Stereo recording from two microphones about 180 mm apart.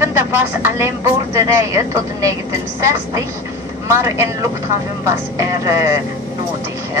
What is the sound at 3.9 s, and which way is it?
A man's voice, 15° right (ahead or behind).